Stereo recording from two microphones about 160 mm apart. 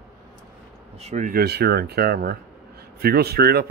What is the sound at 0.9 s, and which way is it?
Speech, 40° right (ahead or behind).